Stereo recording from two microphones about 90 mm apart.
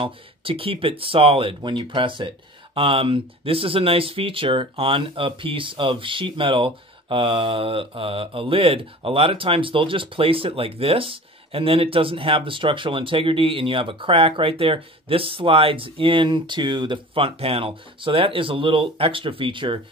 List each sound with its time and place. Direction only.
0.0 s speech: 90° right; by 19.8 s 65° right (ahead or behind)